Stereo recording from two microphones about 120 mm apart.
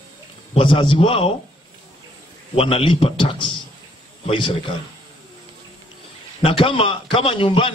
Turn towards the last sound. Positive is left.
turn(degrees=50)  # may be behind; listen again after turning